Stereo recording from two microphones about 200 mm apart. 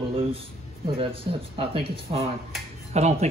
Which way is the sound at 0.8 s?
25° right (ahead or behind).